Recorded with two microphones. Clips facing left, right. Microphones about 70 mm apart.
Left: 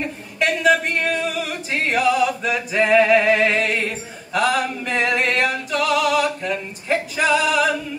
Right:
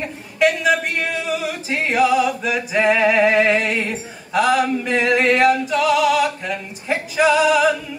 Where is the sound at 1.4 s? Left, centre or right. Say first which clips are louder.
Right 1 dB; centre.